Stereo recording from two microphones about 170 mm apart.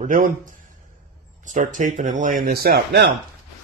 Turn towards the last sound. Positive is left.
turn(degrees=-70)  # may be behind; listen again after turning